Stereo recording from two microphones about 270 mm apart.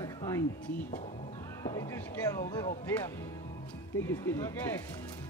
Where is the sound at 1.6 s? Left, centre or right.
Centre.